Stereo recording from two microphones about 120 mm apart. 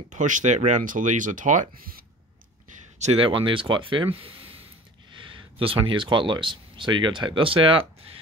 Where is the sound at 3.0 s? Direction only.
60° right (ahead or behind).